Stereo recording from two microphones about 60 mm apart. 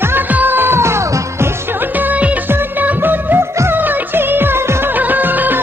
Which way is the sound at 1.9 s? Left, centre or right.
Right.